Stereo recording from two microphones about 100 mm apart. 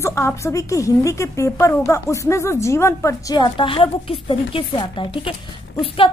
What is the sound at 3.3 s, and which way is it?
A woman's voice, 55° left (ahead or behind).